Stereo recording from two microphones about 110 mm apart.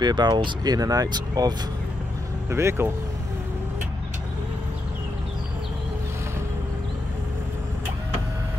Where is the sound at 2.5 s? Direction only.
25° right (ahead or behind).